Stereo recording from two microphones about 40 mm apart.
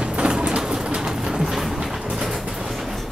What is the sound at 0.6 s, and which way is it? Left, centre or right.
Bird, centre.